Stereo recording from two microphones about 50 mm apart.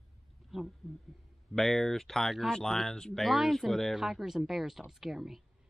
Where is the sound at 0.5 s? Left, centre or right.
Centre.